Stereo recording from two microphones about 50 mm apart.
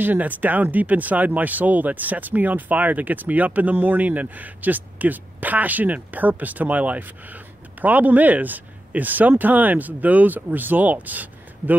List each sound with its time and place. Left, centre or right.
0.0 s speech: right